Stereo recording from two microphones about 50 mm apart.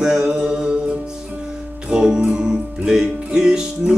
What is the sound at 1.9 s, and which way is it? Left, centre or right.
Music, centre.